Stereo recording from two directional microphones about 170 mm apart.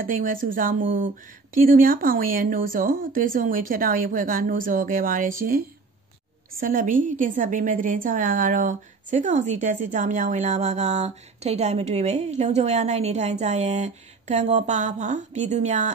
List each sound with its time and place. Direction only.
0.0 s a woman's voice: 55° right (ahead or behind)
6.6 s a woman's voice: 50° right (ahead or behind)